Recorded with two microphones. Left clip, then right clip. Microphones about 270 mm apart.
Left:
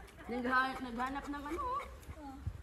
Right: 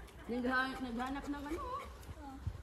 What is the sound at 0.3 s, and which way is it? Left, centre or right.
Speech, centre.